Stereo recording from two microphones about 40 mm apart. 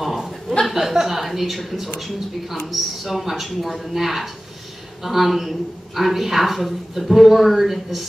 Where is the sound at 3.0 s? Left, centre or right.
Centre.